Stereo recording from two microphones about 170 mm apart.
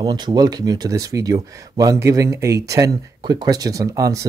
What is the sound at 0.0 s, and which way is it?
Speech, 25° right (ahead or behind).